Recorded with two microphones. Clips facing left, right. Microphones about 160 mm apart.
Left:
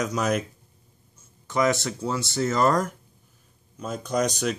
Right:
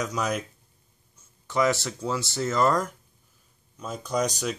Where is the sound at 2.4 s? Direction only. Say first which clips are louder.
Left 2 dB; 40° left (ahead or behind).